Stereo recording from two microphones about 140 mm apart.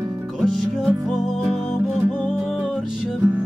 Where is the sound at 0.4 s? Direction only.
Centre (ahead or behind).